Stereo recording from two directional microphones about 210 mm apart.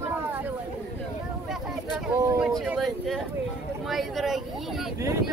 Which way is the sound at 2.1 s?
15° right (ahead or behind).